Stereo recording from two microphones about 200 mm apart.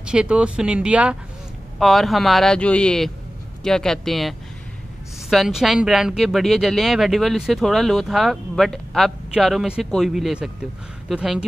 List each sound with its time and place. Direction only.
0.0 s speech: 5° right (ahead or behind)